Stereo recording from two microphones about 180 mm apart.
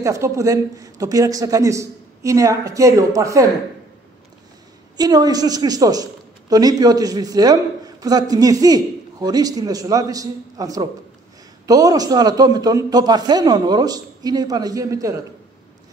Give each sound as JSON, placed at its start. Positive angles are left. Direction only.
{"t": 0.0, "sound": "a man's voice", "side_deg": -15}
{"t": 4.9, "sound": "a man's voice", "side_deg": -20}